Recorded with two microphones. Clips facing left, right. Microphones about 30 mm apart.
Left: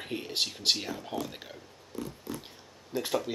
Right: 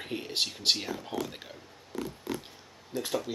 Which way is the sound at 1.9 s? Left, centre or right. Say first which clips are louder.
Right 3 dB; right.